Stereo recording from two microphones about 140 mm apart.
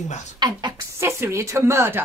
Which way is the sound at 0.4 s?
30° right (ahead or behind).